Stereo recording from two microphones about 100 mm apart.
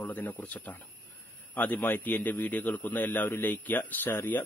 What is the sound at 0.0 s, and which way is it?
A man's voice, 15° left (ahead or behind).